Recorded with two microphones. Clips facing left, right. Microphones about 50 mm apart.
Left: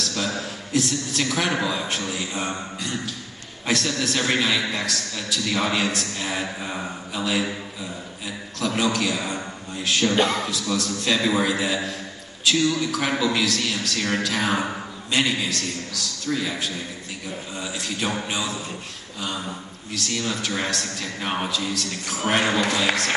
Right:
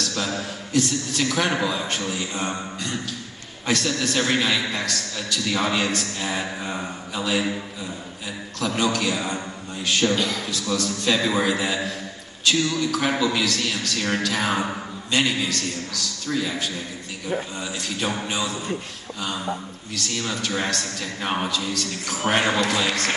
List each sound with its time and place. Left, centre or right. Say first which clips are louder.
0.0 s a man's voice: even; centre
8.5 s a man's voice: even; centre
10.1 s a man's voice: left 4 dB; left
10.5 s a man's voice: even; centre
19.9 s a man's voice: left 1 dB; centre